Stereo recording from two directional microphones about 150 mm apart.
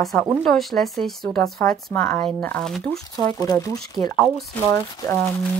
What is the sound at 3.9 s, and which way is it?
Speech, centre (ahead or behind).